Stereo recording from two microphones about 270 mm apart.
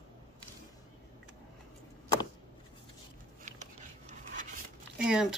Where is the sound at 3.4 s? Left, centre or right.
Right.